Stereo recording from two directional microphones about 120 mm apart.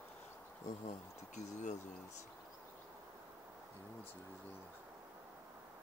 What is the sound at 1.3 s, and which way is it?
Speech, 80° left.